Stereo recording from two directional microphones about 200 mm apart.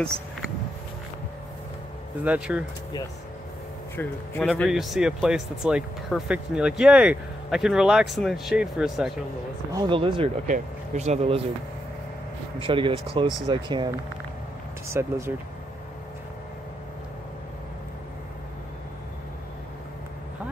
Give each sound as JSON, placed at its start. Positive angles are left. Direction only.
{"t": 2.2, "sound": "speech", "side_deg": -5}
{"t": 3.9, "sound": "speech", "side_deg": 10}
{"t": 9.7, "sound": "speech", "side_deg": -20}
{"t": 10.4, "sound": "speech", "side_deg": -40}
{"t": 12.5, "sound": "speech", "side_deg": -25}
{"t": 14.9, "sound": "speech", "side_deg": -15}